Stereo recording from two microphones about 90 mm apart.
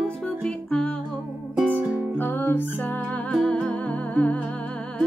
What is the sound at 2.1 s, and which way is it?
Music, 20° left (ahead or behind).